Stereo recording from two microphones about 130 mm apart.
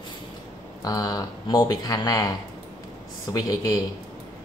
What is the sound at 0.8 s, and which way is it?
Speech, 30° left (ahead or behind).